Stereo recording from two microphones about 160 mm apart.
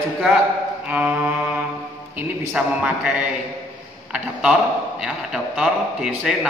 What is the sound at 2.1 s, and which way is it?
A man's voice, 10° right (ahead or behind).